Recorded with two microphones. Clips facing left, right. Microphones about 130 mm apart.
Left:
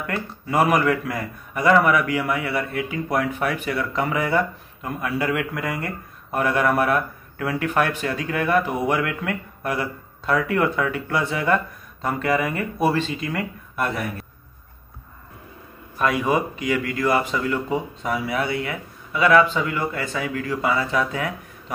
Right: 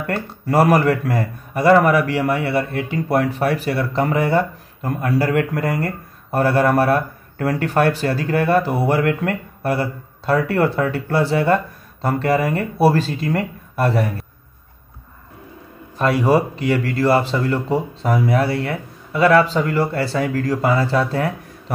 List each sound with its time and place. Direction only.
0.0 s speech: 35° right (ahead or behind)
4.8 s speech: 40° right (ahead or behind)
16.0 s speech: 35° right (ahead or behind)